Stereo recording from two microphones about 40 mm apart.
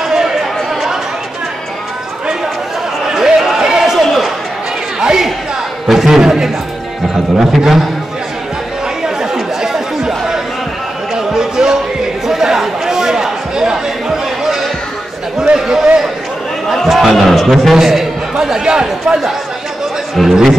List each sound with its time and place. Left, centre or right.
0.0 s chatter: centre
3.2 s basketball bounce: centre
3.6 s a sound: centre
5.9 s a man's voice: centre
9.0 s chatter: centre
11.1 s music: centre
12.3 s a sound: centre
16.7 s a man's voice: centre
18.3 s speech: centre
20.2 s a man's voice: centre